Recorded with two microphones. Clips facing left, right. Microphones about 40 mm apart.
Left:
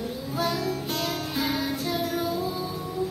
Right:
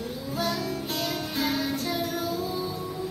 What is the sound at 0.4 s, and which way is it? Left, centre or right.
Music, centre.